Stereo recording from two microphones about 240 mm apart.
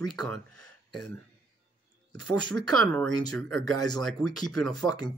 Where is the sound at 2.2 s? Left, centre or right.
Centre.